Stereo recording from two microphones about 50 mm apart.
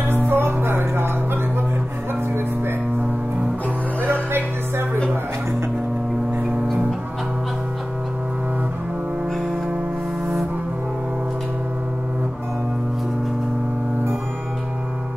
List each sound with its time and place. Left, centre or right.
0.0 s music: right
4.0 s music: right